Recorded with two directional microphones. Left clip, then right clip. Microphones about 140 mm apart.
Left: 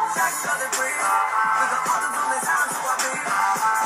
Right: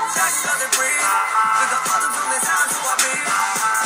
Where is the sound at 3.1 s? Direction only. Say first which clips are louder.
Right 2 dB; 35° right (ahead or behind).